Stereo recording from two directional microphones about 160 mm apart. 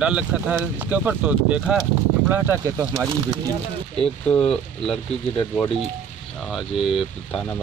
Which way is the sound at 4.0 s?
5° left (ahead or behind).